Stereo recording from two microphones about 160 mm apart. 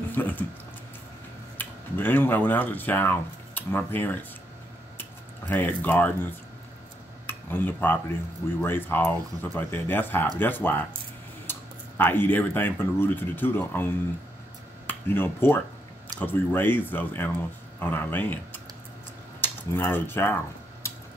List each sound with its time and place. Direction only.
0.1 s speech: 10° left (ahead or behind)
1.6 s speech: 10° left (ahead or behind)
5.5 s speech: 10° left (ahead or behind)
7.2 s speech: 10° left (ahead or behind)
11.5 s a sound: 15° left (ahead or behind)
12.0 s speech: 10° left (ahead or behind)
14.9 s speech: 15° left (ahead or behind)
20.8 s tick-tock: 15° left (ahead or behind)